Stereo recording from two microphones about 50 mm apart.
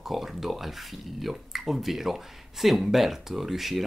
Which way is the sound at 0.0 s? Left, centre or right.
Centre.